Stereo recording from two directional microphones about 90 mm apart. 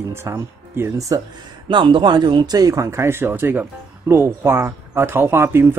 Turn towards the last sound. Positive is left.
turn(degrees=-25)  # may be behind; listen again after turning